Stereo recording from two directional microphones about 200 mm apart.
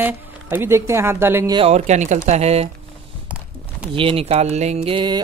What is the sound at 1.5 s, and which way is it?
Speech, 30° right (ahead or behind).